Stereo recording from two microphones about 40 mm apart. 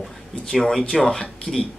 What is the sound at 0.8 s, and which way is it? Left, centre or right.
Speech, centre.